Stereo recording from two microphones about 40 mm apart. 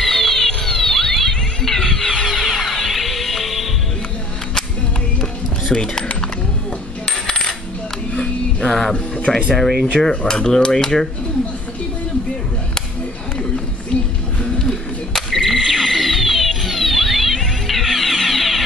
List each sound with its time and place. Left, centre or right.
0.0 s music: centre
2.2 s music: centre
5.2 s music: centre
7.1 s coin: centre
8.1 s a sound: left
8.6 s a sound: centre
9.5 s speech: centre
10.0 s cutlery: centre
14.7 s music: centre